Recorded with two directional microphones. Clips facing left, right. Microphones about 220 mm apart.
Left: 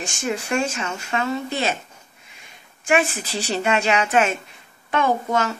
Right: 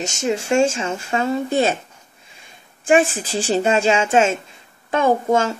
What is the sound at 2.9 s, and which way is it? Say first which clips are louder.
Speech: right 5 dB; 30° right (ahead or behind).